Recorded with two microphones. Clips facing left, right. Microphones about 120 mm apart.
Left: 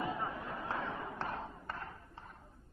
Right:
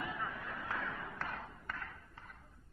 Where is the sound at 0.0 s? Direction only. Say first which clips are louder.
Left 4 dB; 30° left (ahead or behind).